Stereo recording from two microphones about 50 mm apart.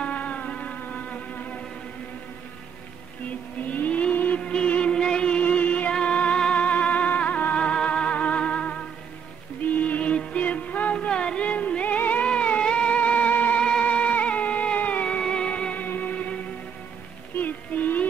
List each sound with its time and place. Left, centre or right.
0.0 s music: left
3.6 s whale vocalization: left
4.4 s music: left
5.4 s music: left
12.3 s cat: left
13.6 s music: centre
15.0 s music: centre
17.4 s a sound: left